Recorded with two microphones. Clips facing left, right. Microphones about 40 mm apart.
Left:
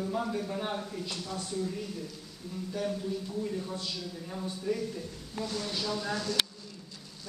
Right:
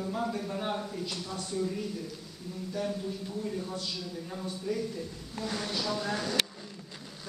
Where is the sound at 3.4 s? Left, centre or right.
Centre.